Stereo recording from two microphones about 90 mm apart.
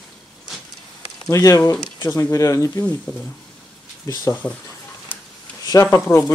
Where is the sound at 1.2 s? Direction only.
40° left (ahead or behind).